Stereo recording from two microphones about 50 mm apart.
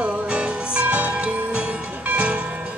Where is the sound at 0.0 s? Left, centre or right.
Right.